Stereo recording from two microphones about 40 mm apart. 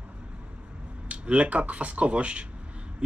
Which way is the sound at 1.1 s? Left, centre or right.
Right.